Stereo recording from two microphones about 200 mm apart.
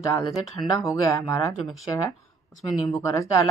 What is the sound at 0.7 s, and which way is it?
Speech, 15° left (ahead or behind).